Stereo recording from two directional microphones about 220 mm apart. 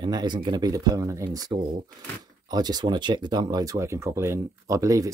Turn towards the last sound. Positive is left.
turn(degrees=-15)  # may be behind; listen again after turning